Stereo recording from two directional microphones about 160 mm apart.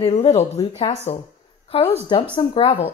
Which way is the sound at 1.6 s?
35° left (ahead or behind).